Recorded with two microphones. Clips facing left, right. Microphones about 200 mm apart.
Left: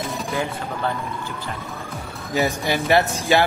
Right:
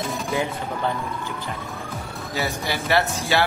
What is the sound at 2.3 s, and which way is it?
Speech, 20° left (ahead or behind).